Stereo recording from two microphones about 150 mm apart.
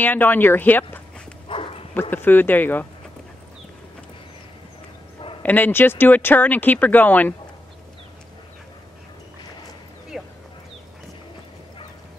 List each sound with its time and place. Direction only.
0.0 s speech: 10° left (ahead or behind)
1.5 s bow-wow: 40° left (ahead or behind)
2.0 s speech: 15° left (ahead or behind)
5.4 s speech: 10° left (ahead or behind)
10.1 s a sound: centre (ahead or behind)